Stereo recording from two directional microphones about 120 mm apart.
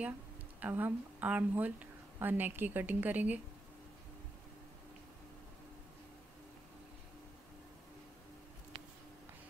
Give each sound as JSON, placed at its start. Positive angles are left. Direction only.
{"t": 0.6, "sound": "a woman's voice", "side_deg": -15}